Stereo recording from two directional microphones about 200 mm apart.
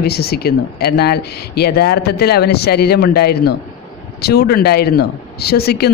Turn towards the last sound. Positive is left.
turn(degrees=55)  # may be behind; listen again after turning